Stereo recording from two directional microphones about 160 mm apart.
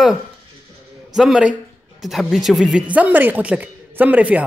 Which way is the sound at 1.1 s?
5° right (ahead or behind).